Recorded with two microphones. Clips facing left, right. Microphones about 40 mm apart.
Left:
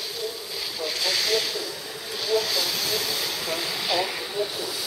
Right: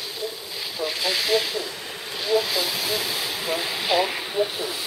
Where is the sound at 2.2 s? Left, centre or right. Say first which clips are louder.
Right 2 dB; centre.